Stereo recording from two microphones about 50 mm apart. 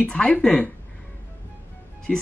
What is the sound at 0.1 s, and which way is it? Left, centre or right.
Speech, left.